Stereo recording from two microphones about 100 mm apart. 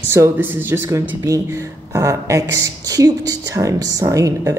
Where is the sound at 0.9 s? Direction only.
30° right (ahead or behind).